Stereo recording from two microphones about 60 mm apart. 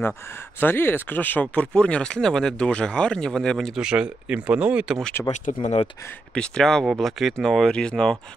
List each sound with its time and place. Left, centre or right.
0.6 s speech: left; by 3.7 s centre
3.7 s speech: centre
5.2 s speech: centre